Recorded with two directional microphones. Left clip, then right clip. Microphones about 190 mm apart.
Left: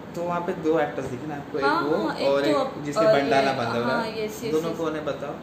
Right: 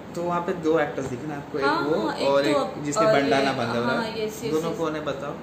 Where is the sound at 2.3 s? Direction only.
20° right (ahead or behind).